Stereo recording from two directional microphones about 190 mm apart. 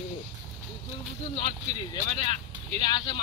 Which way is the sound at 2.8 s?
20° left (ahead or behind).